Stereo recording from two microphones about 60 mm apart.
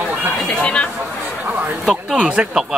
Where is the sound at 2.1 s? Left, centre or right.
Centre.